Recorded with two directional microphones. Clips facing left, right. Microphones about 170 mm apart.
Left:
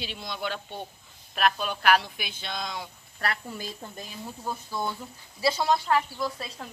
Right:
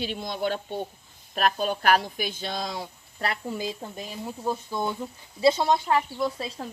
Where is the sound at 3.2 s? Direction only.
20° right (ahead or behind).